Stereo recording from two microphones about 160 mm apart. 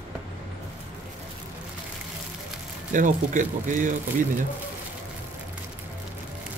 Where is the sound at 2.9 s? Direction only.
55° right (ahead or behind).